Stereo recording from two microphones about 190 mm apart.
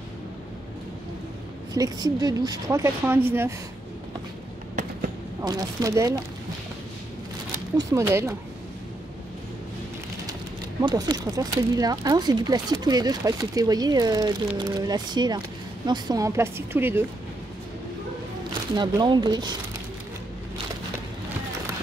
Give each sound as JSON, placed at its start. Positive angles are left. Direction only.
{"t": 1.7, "sound": "a woman's voice", "side_deg": -20}
{"t": 5.4, "sound": "speech", "side_deg": -20}
{"t": 7.7, "sound": "a woman's voice", "side_deg": -15}
{"t": 10.8, "sound": "a woman's voice", "side_deg": -20}
{"t": 18.8, "sound": "speech", "side_deg": -25}